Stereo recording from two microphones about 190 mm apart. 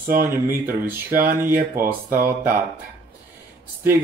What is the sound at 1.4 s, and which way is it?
Speech, 45° right (ahead or behind).